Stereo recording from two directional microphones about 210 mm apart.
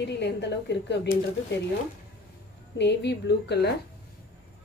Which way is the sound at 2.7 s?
55° left (ahead or behind).